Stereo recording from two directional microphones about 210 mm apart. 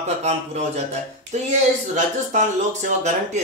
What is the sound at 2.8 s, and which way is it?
Speech, 35° right (ahead or behind).